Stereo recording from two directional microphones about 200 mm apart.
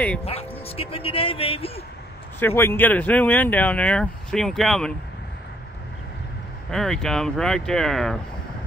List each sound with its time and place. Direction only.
0.2 s speech: 30° left (ahead or behind)
2.4 s speech: 10° left (ahead or behind)
6.7 s speech: 5° left (ahead or behind)